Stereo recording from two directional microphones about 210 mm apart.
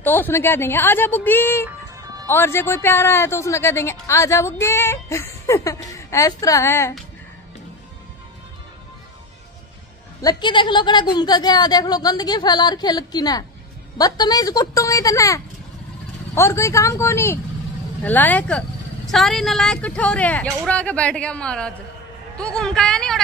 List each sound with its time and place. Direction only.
0.0 s speech: 10° left (ahead or behind)
10.2 s a woman's voice: 20° left (ahead or behind); by 23.2 s 5° left (ahead or behind)